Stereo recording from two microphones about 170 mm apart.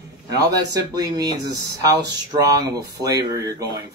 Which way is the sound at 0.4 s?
20° right (ahead or behind).